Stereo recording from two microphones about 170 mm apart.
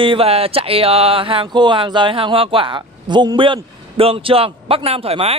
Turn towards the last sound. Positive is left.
turn(degrees=-35)  # may be behind; listen again after turning